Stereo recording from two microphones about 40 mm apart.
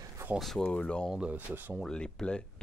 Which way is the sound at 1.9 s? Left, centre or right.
Left.